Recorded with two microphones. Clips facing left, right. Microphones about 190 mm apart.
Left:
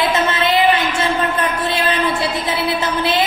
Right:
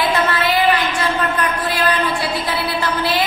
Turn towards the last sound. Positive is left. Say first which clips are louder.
# left 1 dB
turn(degrees=20)  # may be behind; listen again after turning